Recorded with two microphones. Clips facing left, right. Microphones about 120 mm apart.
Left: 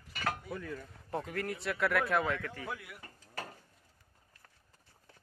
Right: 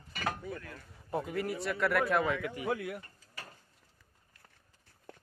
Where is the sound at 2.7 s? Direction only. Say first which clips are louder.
Right 10 dB; 55° right (ahead or behind).